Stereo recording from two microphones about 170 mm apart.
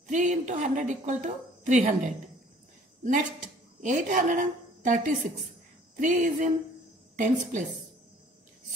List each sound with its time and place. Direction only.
0.1 s a woman's voice: 45° right (ahead or behind)
3.0 s a woman's voice: 50° right (ahead or behind)